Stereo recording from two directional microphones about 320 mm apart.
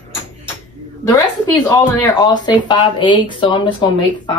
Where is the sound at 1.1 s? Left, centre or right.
Centre.